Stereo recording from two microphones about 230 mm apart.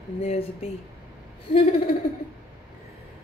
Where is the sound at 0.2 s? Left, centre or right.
Left.